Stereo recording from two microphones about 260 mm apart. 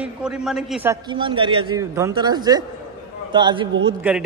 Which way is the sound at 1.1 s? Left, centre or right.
Centre.